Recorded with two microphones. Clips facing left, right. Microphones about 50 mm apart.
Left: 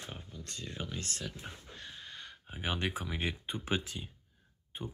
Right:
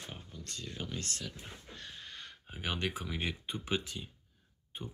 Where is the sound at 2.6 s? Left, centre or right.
Centre.